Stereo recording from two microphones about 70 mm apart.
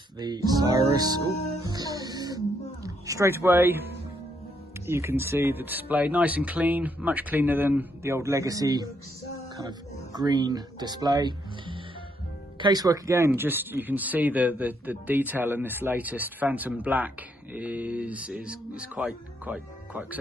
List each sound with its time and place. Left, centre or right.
0.2 s speech: right
1.7 s music: right
3.3 s speech: right
4.8 s a man's voice: right
8.0 s speech: right
9.6 s speech: right
12.6 s speech: right
13.3 s a man's voice: right